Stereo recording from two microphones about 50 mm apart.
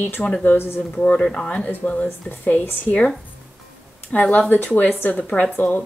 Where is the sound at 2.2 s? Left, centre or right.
Left.